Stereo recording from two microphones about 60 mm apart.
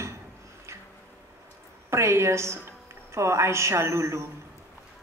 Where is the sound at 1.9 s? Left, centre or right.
Right.